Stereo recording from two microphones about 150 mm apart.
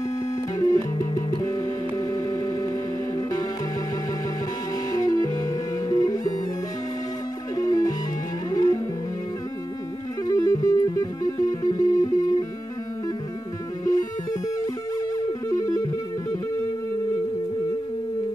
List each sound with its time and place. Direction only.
0.6 s music: 20° left (ahead or behind)
4.9 s music: 25° left (ahead or behind)
7.5 s music: 25° left (ahead or behind)
10.2 s music: 25° left (ahead or behind)
15.1 s music: 25° left (ahead or behind)